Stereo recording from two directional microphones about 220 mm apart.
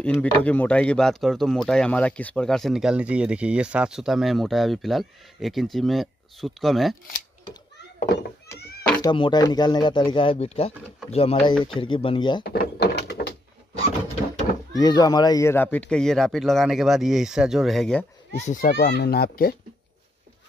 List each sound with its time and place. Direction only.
0.0 s speech: 5° left (ahead or behind)
9.0 s speech: 20° left (ahead or behind)
12.4 s a sound: 45° left (ahead or behind)
14.7 s speech: 20° left (ahead or behind)
18.4 s a child's voice: 35° left (ahead or behind)